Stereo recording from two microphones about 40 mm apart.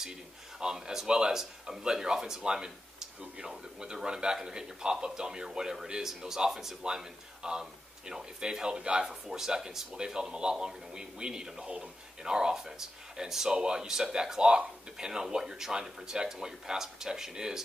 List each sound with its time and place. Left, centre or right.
0.6 s speech: centre